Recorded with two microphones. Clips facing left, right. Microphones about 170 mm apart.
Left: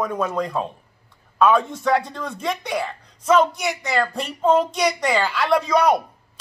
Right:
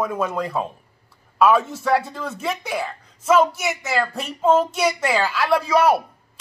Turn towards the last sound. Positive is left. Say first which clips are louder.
# even
turn(degrees=-5)  # may be behind; listen again after turning